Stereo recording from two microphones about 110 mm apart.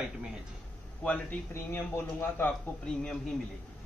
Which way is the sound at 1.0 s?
15° left (ahead or behind).